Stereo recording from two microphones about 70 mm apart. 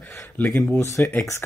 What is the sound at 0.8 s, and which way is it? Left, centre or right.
Speech, left.